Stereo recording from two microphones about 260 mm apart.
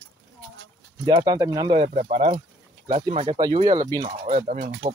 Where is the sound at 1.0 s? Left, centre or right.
Centre.